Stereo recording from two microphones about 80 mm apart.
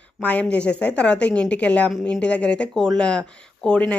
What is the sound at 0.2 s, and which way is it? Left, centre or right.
Speech, centre.